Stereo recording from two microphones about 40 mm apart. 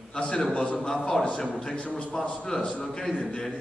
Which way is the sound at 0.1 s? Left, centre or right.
Left.